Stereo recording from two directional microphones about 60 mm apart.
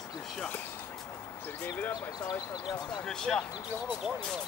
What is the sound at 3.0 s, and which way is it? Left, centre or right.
Basketball bounce, centre.